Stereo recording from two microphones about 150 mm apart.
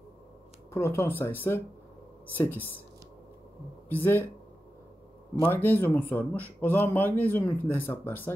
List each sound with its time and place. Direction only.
0.7 s speech: 15° left (ahead or behind)
3.9 s speech: 15° left (ahead or behind)
5.5 s speech: 15° left (ahead or behind)